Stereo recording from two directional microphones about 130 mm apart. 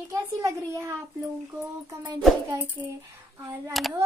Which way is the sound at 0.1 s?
25° right (ahead or behind).